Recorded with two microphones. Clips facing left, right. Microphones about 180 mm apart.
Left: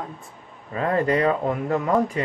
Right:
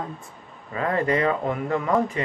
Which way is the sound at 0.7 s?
35° left (ahead or behind).